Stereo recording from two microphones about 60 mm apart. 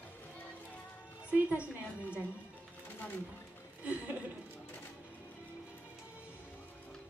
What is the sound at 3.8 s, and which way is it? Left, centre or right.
Speech, right.